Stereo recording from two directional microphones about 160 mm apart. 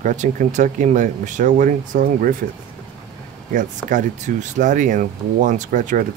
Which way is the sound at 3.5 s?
55° right (ahead or behind).